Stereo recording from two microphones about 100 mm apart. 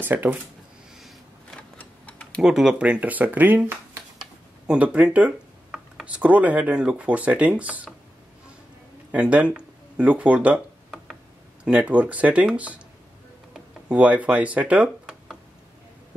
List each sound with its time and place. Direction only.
0.0 s speech: 20° right (ahead or behind)
0.9 s a sound: centre (ahead or behind)
1.8 s tick-tock: 10° left (ahead or behind)
2.4 s speech: 5° right (ahead or behind); by 4.0 s 20° right (ahead or behind)
4.2 s a sound: 10° right (ahead or behind)
6.1 s speech: 15° right (ahead or behind)
9.1 s speech: 10° right (ahead or behind)